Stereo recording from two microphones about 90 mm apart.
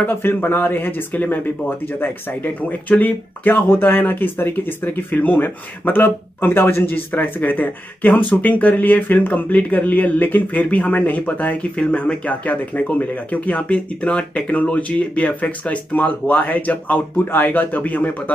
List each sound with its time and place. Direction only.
0.0 s speech: 20° left (ahead or behind)